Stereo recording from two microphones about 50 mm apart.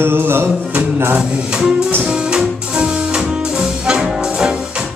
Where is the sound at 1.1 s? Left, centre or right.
Centre.